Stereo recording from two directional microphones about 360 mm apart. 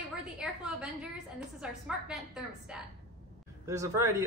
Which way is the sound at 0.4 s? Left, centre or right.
Centre.